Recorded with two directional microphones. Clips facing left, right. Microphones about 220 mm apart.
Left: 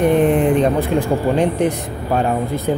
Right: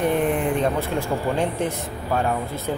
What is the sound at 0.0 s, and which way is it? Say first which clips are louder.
Speech: left 7 dB; 20° left (ahead or behind).